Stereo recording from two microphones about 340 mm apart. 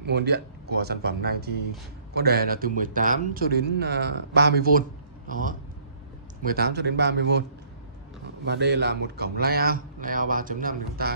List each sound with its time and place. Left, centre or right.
0.0 s speech: right
8.5 s speech: right